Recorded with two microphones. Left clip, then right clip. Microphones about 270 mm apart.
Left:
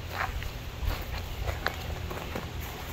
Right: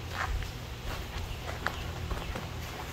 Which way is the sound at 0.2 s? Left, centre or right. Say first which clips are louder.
Left 2 dB; left.